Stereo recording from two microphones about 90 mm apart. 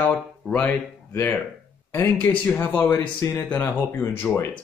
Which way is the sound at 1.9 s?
25° left (ahead or behind).